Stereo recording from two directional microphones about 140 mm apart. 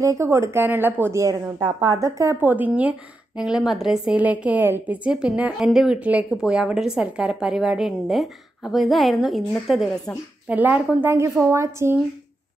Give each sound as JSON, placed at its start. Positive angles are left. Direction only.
{"t": 0.0, "sound": "a woman's voice", "side_deg": -20}